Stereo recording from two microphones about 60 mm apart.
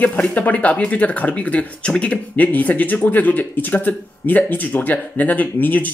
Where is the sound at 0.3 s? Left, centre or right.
Left.